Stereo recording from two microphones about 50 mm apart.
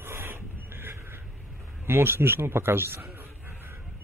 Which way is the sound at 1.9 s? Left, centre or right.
Right.